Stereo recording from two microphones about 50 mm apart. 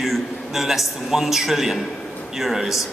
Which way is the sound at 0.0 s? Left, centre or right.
Centre.